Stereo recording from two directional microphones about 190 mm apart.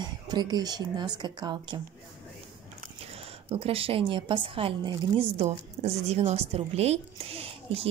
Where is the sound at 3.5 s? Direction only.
30° right (ahead or behind).